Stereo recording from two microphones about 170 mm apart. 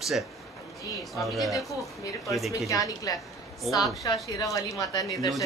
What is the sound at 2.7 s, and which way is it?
A woman's voice, 20° left (ahead or behind).